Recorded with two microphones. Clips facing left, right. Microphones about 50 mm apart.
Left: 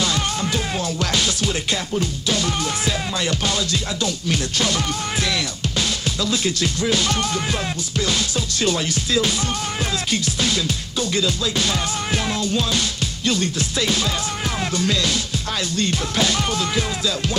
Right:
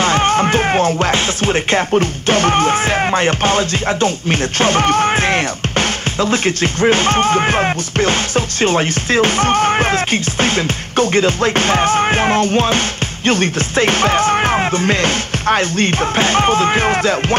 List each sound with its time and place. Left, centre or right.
0.0 s music: right